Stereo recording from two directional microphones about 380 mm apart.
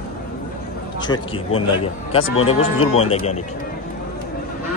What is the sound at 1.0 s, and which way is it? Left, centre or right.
Speech, centre.